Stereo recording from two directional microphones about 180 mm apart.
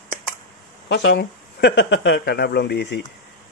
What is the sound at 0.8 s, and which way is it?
Speech, 75° left (ahead or behind).